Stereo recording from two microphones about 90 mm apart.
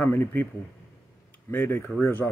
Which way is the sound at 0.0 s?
20° left (ahead or behind).